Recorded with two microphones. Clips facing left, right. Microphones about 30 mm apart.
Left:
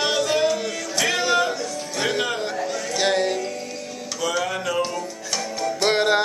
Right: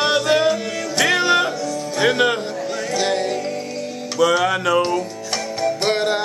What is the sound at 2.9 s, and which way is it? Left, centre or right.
Music, centre.